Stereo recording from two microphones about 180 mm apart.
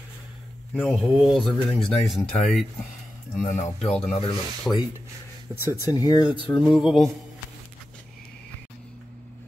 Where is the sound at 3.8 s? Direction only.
5° left (ahead or behind).